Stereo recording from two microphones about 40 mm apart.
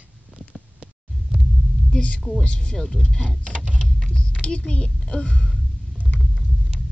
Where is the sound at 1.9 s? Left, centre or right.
Left.